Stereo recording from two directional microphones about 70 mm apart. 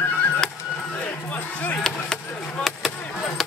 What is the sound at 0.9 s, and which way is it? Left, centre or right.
Chop, centre.